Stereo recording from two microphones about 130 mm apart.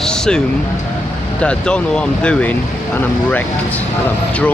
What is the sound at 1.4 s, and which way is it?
Speech, 10° left (ahead or behind).